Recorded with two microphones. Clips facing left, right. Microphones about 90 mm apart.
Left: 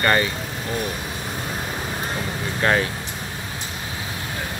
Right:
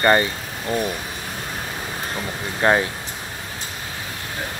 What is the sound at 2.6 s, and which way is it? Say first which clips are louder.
Speech: right 2 dB; 20° right (ahead or behind).